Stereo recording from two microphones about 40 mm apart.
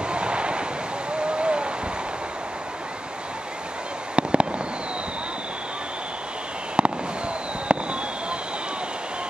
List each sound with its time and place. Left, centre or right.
0.0 s a sound: right
4.1 s fireworks: right
6.8 s fireworks: right